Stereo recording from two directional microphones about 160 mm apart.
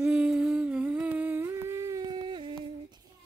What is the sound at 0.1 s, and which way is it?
Humming, 5° right (ahead or behind).